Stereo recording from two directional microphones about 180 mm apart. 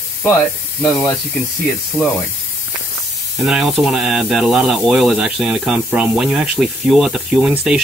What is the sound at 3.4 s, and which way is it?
Speech, centre (ahead or behind).